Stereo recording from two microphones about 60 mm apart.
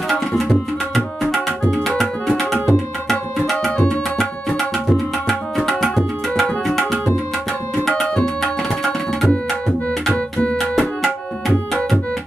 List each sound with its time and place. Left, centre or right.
0.4 s tabla: centre
3.5 s music: centre
4.2 s tabla: centre
8.4 s tabla: centre
10.6 s music: centre